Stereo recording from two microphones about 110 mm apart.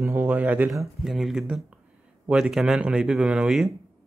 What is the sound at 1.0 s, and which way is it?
Speech, 5° right (ahead or behind).